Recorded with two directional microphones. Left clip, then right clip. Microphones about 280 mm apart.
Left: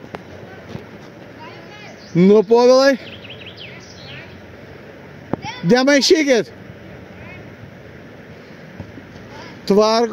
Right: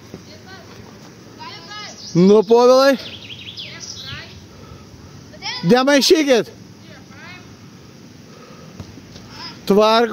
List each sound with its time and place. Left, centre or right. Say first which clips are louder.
2.1 s speech: even; centre
5.4 s a child's voice: right 1 dB; centre
9.7 s speech: right 1 dB; right